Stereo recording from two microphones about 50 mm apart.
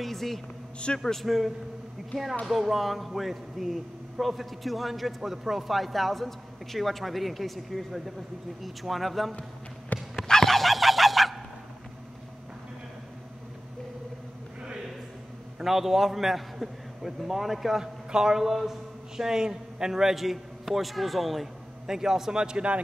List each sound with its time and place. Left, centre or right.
0.0 s a man's voice: centre
1.2 s a man's voice: centre
9.9 s speech: left
10.2 s fowl: centre
15.6 s a man's voice: centre